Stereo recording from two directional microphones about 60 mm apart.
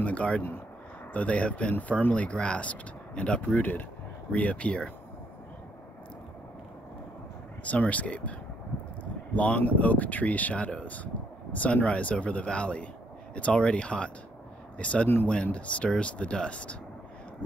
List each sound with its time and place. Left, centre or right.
0.0 s speech: left
7.6 s speech: left
17.4 s a sound: centre